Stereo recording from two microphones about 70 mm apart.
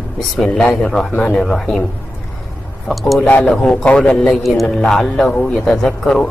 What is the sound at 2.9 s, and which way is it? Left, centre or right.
Speech, centre.